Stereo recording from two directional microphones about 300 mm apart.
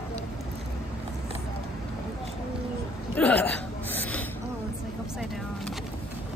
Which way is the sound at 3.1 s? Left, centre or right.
Centre.